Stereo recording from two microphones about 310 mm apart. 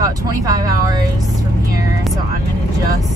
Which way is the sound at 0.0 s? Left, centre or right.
Centre.